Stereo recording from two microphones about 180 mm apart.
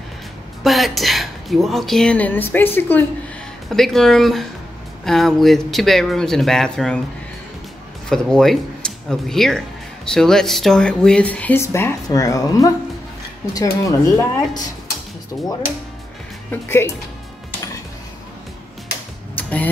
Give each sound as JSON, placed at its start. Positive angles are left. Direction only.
{"t": 0.7, "sound": "a woman's voice", "side_deg": 0}
{"t": 8.1, "sound": "speech", "side_deg": 0}
{"t": 16.6, "sound": "speech", "side_deg": 15}
{"t": 19.3, "sound": "a sound", "side_deg": 10}